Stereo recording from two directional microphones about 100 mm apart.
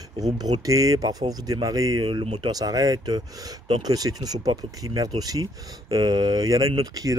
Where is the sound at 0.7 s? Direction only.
35° right (ahead or behind).